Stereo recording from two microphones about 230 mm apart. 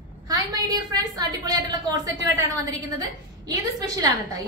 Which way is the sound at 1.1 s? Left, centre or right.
Centre.